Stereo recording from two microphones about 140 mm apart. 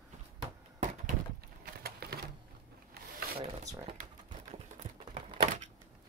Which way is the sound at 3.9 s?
65° right (ahead or behind).